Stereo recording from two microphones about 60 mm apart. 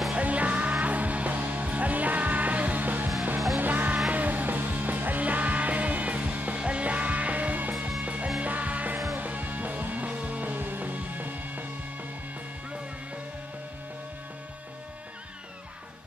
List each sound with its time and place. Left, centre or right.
0.1 s music: right